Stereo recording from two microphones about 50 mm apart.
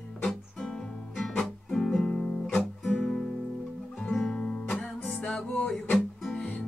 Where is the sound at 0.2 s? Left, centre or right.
Centre.